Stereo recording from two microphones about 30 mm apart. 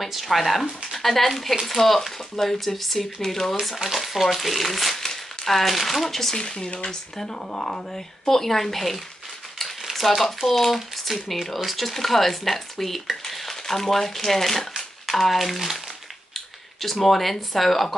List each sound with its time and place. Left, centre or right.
0.0 s speech: centre
3.6 s speech: centre
6.4 s speech: left; by 14.6 s centre
14.8 s a sound: centre
15.3 s speech: centre